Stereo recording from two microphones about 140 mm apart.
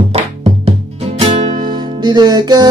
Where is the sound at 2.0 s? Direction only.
30° right (ahead or behind).